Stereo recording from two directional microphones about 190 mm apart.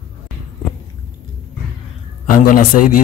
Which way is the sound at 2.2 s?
45° left (ahead or behind).